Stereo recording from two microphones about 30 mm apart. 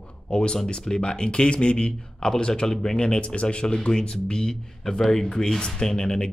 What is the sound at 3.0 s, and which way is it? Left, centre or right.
Speech, left.